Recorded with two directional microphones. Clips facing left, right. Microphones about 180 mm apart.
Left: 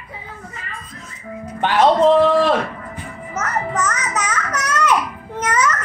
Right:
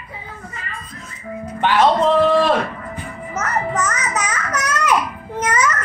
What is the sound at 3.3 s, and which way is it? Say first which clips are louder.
Music: right 1 dB; 10° right (ahead or behind).